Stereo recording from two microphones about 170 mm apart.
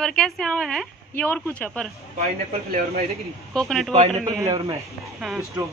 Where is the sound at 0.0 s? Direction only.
5° left (ahead or behind).